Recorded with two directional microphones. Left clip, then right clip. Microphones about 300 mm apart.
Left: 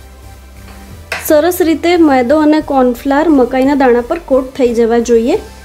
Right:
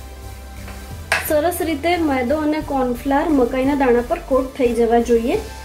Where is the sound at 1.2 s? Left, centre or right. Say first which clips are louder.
Left 12 dB; left.